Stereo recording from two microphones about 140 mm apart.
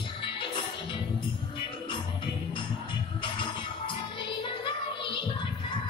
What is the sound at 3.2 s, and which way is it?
Music, 35° left (ahead or behind).